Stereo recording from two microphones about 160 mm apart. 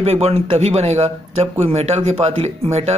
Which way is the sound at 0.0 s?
40° right (ahead or behind).